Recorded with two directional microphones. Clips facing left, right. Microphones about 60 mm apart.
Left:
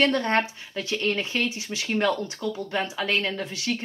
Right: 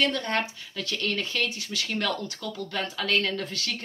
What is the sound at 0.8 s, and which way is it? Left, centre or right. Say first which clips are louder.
Speech: left 3 dB; left.